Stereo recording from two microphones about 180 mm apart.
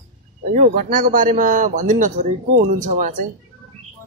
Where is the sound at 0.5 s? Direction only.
50° right (ahead or behind).